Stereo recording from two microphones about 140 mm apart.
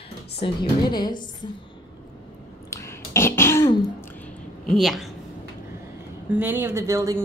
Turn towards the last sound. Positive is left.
turn(degrees=-20)  # may be behind; listen again after turning